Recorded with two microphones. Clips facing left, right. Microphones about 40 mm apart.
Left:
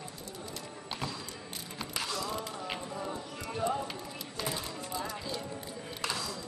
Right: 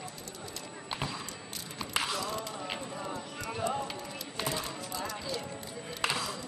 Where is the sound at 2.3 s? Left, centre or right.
Centre.